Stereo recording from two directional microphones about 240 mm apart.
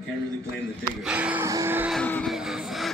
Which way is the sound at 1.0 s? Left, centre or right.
Centre.